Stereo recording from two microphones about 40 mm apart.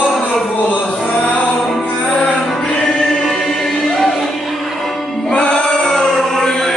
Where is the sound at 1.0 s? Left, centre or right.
Left.